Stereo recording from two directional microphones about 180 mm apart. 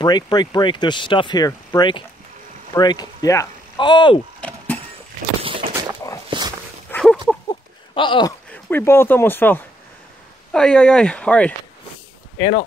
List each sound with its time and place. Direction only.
0.0 s speech: 25° left (ahead or behind)
4.4 s vehicle: 10° left (ahead or behind)
5.4 s a sound: 30° right (ahead or behind)
6.3 s dog: 25° right (ahead or behind)
6.9 s a sound: 5° left (ahead or behind)
7.9 s speech: 30° left (ahead or behind)
8.6 s speech: 10° left (ahead or behind)
12.4 s speech: 25° left (ahead or behind)